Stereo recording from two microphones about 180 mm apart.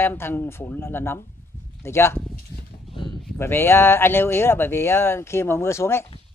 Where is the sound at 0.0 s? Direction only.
10° left (ahead or behind).